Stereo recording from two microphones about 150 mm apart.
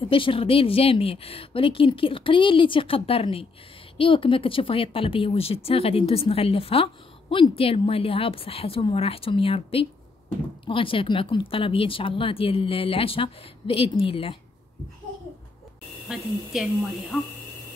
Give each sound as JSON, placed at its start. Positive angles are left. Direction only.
{"t": 0.1, "sound": "speech", "side_deg": 35}